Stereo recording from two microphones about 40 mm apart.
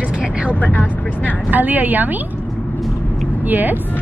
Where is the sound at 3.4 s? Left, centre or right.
Right.